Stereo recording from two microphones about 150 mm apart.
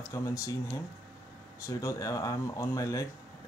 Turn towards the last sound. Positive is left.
turn(degrees=20)  # may be behind; listen again after turning